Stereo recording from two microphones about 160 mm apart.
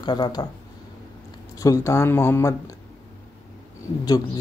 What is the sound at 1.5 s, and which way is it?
Speech, 20° left (ahead or behind).